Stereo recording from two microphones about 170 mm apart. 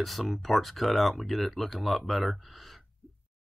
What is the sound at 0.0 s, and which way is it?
Speech, centre (ahead or behind).